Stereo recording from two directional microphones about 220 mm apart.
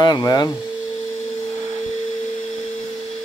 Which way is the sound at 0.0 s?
20° left (ahead or behind).